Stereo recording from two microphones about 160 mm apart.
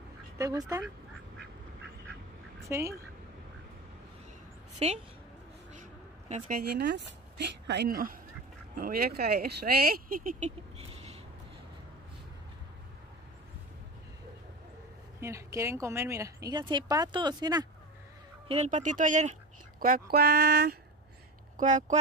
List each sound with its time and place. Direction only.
0.4 s speech: 20° right (ahead or behind)
2.6 s speech: 15° right (ahead or behind)
4.7 s speech: 40° right (ahead or behind)
5.8 s a sound: 50° right (ahead or behind)
6.6 s a woman's voice: 90° right; by 10.5 s 60° right (ahead or behind)
10.8 s a sound: 40° right (ahead or behind)
15.1 s speech: 20° right (ahead or behind)
18.5 s speech: 45° right (ahead or behind)
19.8 s speech: 70° right (ahead or behind)
21.5 s speech: 50° right (ahead or behind)